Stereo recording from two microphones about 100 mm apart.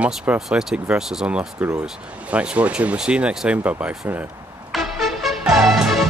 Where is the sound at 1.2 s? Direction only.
20° right (ahead or behind).